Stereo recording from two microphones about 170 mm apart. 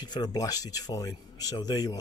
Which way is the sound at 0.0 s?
25° left (ahead or behind).